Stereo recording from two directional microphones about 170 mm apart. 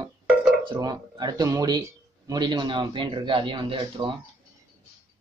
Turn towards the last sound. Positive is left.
turn(degrees=-30)  # may be behind; listen again after turning